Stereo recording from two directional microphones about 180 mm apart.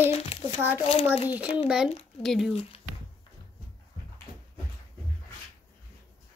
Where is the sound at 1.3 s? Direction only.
5° right (ahead or behind).